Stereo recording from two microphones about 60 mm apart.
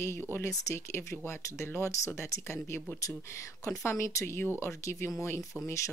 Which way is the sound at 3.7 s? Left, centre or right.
Left.